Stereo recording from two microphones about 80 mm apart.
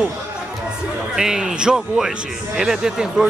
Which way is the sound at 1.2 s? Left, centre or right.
Centre.